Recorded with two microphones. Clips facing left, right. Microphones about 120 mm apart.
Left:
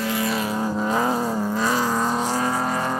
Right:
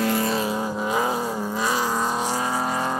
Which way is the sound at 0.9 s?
10° right (ahead or behind).